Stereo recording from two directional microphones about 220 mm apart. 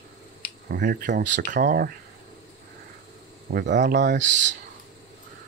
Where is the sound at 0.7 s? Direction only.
45° right (ahead or behind).